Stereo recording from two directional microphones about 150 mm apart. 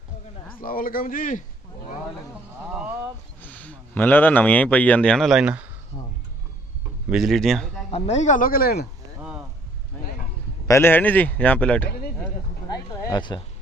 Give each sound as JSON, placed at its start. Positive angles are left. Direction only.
{"t": 0.6, "sound": "a man's voice", "side_deg": 70}
{"t": 2.6, "sound": "a sound", "side_deg": -5}
{"t": 3.4, "sound": "speech", "side_deg": 10}
{"t": 7.1, "sound": "speech", "side_deg": 0}
{"t": 7.9, "sound": "speech", "side_deg": 45}
{"t": 10.7, "sound": "speech", "side_deg": 15}
{"t": 12.6, "sound": "a sound", "side_deg": 25}